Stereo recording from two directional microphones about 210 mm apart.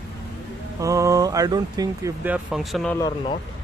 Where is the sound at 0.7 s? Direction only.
15° right (ahead or behind); by 3.0 s centre (ahead or behind).